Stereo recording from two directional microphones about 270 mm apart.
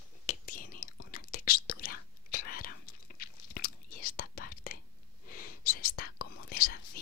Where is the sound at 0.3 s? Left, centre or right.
Left.